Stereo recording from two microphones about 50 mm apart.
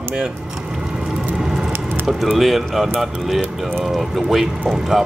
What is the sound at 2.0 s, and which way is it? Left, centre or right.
Speech, centre.